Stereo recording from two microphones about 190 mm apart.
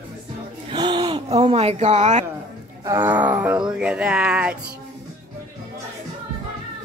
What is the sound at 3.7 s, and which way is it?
Speech, 5° right (ahead or behind).